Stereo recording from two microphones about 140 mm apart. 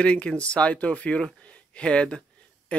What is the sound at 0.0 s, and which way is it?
Speech, 5° left (ahead or behind).